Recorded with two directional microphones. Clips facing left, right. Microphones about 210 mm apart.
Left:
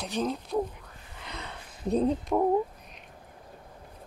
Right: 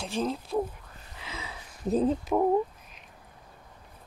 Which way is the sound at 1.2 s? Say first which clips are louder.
Even; 5° right (ahead or behind).